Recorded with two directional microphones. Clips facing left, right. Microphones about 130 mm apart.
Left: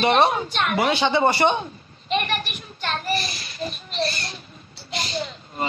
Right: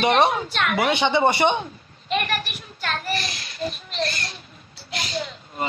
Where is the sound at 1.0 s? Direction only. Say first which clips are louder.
Even; 15° right (ahead or behind).